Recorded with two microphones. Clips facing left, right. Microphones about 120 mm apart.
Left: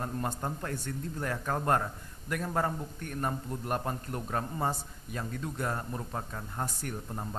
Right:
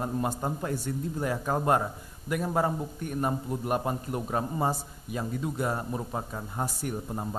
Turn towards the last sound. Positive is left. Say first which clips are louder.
# right 5 dB
turn(degrees=-10)  # may be behind; listen again after turning